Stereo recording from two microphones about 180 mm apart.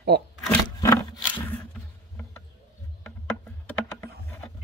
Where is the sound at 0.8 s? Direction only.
15° left (ahead or behind).